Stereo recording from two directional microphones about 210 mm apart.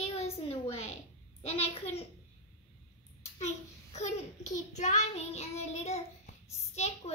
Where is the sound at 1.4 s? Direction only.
30° left (ahead or behind).